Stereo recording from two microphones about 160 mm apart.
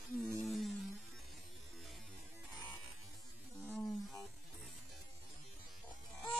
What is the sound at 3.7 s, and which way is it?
Roaring cats, centre (ahead or behind).